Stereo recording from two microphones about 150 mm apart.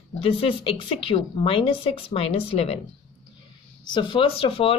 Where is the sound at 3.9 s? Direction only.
35° left (ahead or behind).